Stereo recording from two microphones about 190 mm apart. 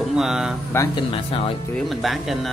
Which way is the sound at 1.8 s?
Centre (ahead or behind).